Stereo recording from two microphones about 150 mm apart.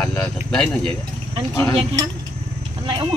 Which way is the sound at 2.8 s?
35° right (ahead or behind).